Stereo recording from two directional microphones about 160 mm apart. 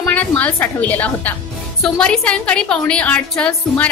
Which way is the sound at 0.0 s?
10° left (ahead or behind).